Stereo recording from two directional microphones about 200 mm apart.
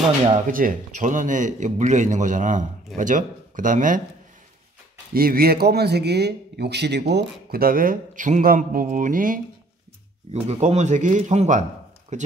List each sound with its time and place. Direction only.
0.5 s a man's voice: 45° right (ahead or behind)
5.1 s a man's voice: 50° right (ahead or behind)
10.5 s a man's voice: 35° right (ahead or behind)